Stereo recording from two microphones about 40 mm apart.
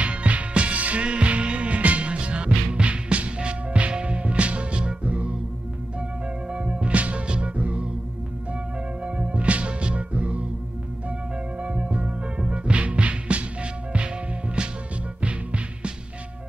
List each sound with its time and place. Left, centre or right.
0.0 s music: right
9.0 s music: right